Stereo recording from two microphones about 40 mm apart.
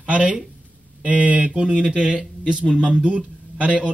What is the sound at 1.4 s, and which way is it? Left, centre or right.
Speech, right.